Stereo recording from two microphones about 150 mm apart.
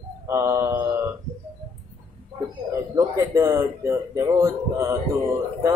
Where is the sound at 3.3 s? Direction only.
20° right (ahead or behind).